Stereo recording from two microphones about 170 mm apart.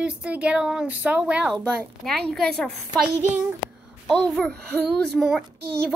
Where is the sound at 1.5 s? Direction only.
5° left (ahead or behind).